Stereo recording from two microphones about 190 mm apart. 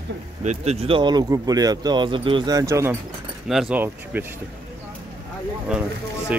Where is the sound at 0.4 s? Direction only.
35° right (ahead or behind); by 3.0 s 15° right (ahead or behind).